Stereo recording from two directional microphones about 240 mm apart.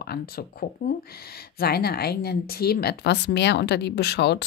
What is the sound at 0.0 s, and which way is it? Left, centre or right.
Speech, left.